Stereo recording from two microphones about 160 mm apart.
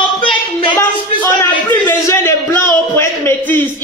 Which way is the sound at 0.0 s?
30° left (ahead or behind).